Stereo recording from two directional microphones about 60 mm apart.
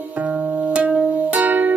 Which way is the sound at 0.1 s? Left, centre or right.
Right.